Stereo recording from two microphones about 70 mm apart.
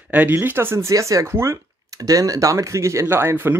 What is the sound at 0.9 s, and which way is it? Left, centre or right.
Speech, right.